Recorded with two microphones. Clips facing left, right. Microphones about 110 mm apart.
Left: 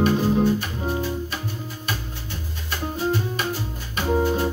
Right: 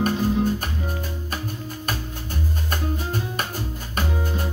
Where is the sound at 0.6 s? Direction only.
45° right (ahead or behind).